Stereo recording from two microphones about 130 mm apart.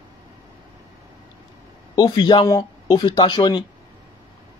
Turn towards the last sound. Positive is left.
turn(degrees=35)  # may be behind; listen again after turning